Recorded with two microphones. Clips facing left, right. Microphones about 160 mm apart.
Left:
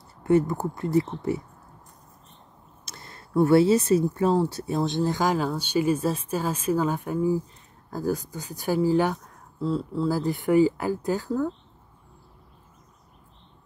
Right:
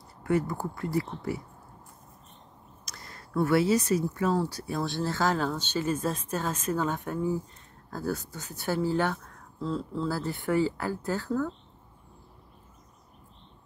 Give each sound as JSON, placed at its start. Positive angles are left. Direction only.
{"t": 0.2, "sound": "speech", "side_deg": 25}
{"t": 2.8, "sound": "speech", "side_deg": 25}